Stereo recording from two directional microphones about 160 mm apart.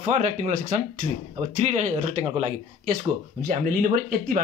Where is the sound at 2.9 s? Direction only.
55° right (ahead or behind).